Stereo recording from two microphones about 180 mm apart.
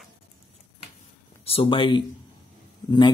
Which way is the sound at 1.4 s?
30° left (ahead or behind).